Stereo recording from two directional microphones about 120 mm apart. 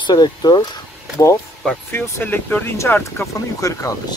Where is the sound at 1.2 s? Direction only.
20° left (ahead or behind).